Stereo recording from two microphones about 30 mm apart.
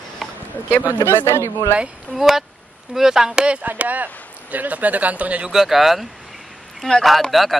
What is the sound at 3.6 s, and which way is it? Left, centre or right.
Speech, right.